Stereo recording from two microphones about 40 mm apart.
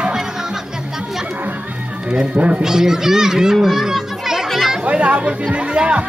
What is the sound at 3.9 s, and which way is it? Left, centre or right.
Children playing, centre.